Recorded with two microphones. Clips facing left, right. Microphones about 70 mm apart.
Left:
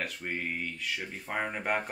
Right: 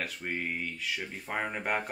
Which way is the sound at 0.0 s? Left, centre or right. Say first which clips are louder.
Even; centre.